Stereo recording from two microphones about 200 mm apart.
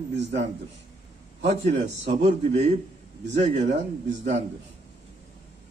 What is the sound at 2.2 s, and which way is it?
A man's voice, 35° right (ahead or behind).